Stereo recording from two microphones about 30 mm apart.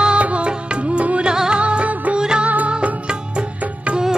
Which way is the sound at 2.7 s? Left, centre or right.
Right.